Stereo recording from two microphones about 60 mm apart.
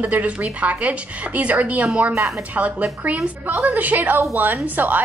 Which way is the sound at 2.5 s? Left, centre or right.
Right.